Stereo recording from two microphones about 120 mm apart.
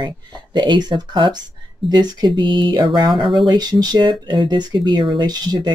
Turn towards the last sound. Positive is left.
turn(degrees=-35)  # may be behind; listen again after turning